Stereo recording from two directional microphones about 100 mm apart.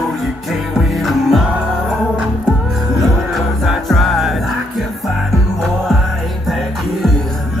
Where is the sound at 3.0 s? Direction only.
Centre (ahead or behind).